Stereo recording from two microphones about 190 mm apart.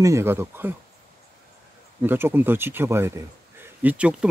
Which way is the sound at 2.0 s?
10° right (ahead or behind).